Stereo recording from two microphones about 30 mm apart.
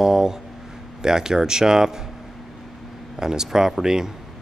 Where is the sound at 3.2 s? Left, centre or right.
Centre.